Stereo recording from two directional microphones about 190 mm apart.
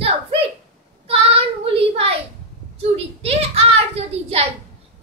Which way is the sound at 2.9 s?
30° right (ahead or behind).